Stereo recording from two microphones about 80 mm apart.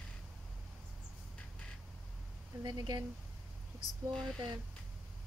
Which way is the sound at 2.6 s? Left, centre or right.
Right.